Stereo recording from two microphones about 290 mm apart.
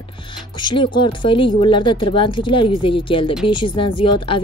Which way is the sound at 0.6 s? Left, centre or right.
Centre.